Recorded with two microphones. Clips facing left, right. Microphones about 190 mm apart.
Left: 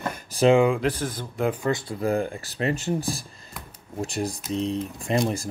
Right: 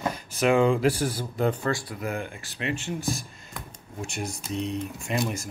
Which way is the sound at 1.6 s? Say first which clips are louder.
Left 2 dB; 20° left (ahead or behind).